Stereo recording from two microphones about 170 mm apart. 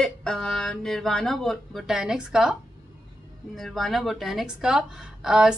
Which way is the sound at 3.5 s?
Centre (ahead or behind).